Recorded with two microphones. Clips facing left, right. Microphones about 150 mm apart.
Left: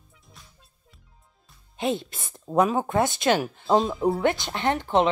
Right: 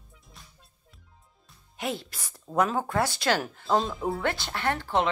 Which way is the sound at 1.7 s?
20° left (ahead or behind).